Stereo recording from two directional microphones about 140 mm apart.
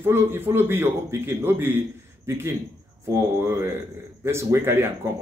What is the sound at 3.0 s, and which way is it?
Speech, 20° right (ahead or behind).